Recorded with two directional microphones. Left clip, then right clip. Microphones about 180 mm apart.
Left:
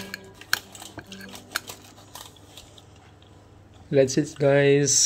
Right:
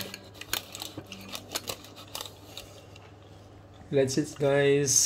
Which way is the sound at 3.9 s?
40° left (ahead or behind).